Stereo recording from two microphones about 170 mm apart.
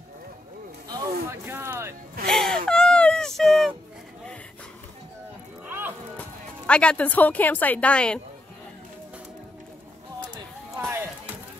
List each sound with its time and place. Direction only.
0.8 s a sound: 25° right (ahead or behind)
1.4 s music: 15° right (ahead or behind)
2.2 s gasp: 5° left (ahead or behind)
5.7 s music: 10° right (ahead or behind)
6.1 s speech: 5° left (ahead or behind)